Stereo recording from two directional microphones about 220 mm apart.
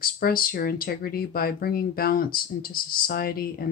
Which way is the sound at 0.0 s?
40° left (ahead or behind).